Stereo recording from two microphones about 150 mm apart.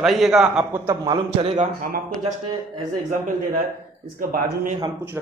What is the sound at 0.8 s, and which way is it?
Speech, 30° right (ahead or behind).